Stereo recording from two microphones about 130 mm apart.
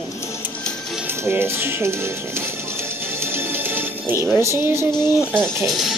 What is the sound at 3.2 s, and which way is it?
Music, 15° right (ahead or behind).